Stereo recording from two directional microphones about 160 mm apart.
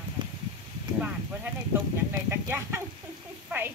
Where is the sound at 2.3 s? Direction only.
15° right (ahead or behind).